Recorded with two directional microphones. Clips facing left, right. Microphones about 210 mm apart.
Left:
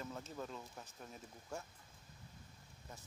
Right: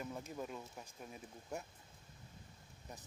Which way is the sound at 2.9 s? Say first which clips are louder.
Right 2 dB; 20° right (ahead or behind).